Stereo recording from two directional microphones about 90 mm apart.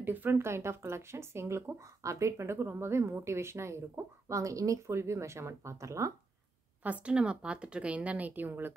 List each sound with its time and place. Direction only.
0.0 s speech: 20° right (ahead or behind)
6.8 s a woman's voice: 15° right (ahead or behind)